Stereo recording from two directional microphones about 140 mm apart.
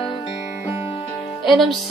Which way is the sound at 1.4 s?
Centre (ahead or behind).